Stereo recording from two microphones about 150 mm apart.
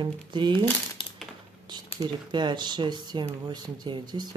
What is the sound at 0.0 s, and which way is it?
Speech, 30° right (ahead or behind).